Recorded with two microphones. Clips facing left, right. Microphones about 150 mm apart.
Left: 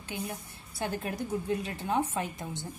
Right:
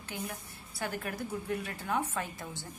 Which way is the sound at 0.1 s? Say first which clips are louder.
Left 3 dB; 20° left (ahead or behind).